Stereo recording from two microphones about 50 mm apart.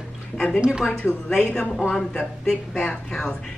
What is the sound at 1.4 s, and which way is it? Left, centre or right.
Speech, centre.